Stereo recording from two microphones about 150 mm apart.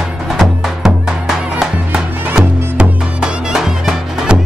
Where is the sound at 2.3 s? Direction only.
5° right (ahead or behind).